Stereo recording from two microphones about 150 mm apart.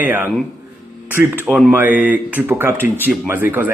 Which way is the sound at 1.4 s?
Centre (ahead or behind).